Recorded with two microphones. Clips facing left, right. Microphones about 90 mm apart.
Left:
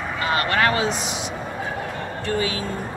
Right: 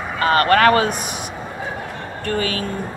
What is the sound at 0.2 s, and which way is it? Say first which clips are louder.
Speech: right 7 dB; 50° right (ahead or behind).